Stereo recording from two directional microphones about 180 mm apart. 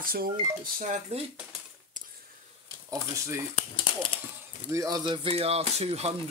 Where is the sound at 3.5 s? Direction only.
30° left (ahead or behind).